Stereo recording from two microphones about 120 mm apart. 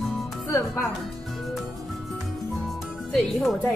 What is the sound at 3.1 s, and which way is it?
Speech, centre (ahead or behind).